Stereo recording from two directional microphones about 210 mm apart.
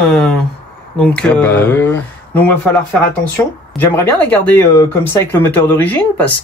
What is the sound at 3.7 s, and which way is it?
Speech, 10° left (ahead or behind).